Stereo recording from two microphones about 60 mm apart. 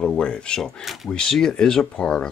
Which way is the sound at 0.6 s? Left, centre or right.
Centre.